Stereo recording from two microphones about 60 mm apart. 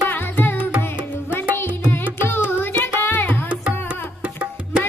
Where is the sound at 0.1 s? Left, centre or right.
Left.